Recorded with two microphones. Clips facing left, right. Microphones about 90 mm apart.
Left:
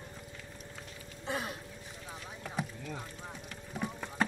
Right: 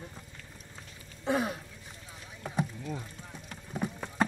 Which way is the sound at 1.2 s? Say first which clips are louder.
Right 7 dB; 50° right (ahead or behind).